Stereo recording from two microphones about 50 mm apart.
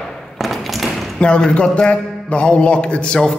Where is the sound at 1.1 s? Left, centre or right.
Left.